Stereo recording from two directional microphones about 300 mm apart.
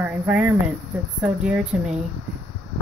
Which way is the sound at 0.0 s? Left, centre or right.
Centre.